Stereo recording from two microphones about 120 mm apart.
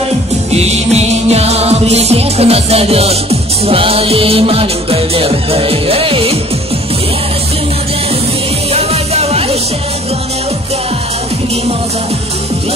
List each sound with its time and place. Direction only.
0.5 s music: 60° right (ahead or behind)
8.7 s music: 60° right (ahead or behind)